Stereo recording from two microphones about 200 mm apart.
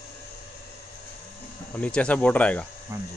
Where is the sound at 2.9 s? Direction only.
15° right (ahead or behind).